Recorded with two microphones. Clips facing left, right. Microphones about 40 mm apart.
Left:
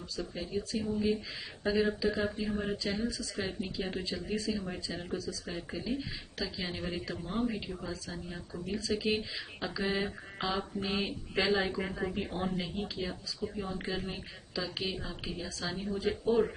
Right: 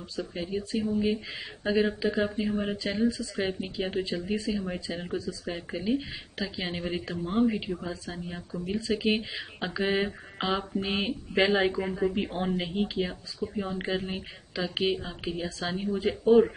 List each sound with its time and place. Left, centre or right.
0.1 s speech: right
11.8 s speech: centre
12.2 s speech: right